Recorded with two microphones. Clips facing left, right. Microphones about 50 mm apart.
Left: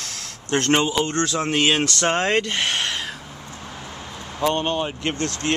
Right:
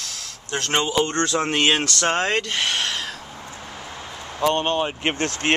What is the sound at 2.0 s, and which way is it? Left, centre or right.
Speech, centre.